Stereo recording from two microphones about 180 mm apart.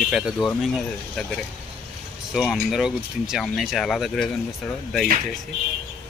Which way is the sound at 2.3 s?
Centre (ahead or behind).